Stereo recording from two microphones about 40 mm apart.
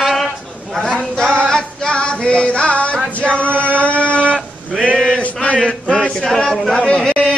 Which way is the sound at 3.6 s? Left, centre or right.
Left.